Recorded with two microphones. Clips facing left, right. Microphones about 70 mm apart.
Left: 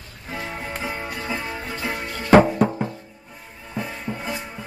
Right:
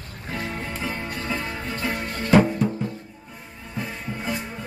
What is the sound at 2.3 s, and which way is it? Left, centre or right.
Music, left.